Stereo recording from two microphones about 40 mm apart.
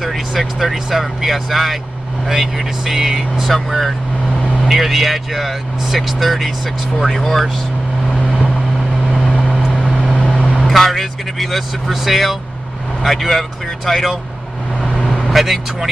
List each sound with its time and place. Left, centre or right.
0.0 s speech: centre
7.0 s speech: centre
9.3 s vehicle: left
9.7 s vehicle: centre
11.9 s speech: centre
14.8 s vehicle: centre
15.2 s speech: centre